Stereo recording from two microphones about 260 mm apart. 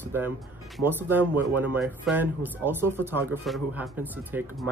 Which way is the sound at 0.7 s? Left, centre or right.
Centre.